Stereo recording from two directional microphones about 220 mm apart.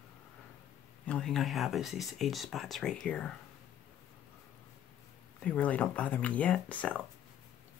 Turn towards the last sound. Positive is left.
turn(degrees=5)  # may be behind; listen again after turning